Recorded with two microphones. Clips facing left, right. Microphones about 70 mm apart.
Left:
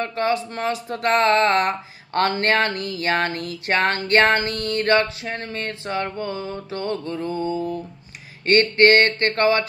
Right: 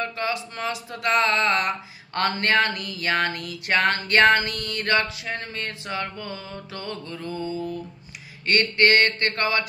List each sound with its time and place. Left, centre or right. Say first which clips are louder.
0.0 s speech: left 5 dB; left